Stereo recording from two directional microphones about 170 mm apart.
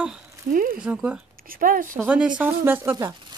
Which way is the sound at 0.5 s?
55° right (ahead or behind).